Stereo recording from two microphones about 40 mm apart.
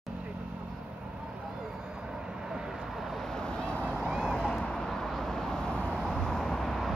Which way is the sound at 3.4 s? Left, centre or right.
Left.